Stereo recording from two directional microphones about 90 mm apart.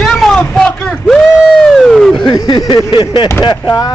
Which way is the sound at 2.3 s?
50° left (ahead or behind).